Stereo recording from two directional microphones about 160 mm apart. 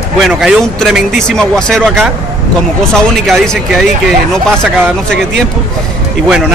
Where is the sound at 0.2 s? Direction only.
Centre (ahead or behind).